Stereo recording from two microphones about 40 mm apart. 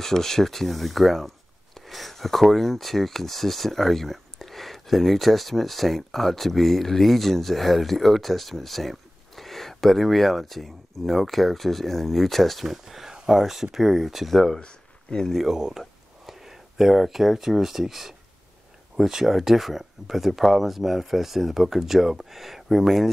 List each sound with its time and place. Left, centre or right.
0.0 s speech: centre
14.3 s speech: centre
14.6 s a sound: left
15.4 s speech: centre